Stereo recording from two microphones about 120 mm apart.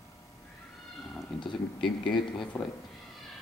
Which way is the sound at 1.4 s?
40° left (ahead or behind).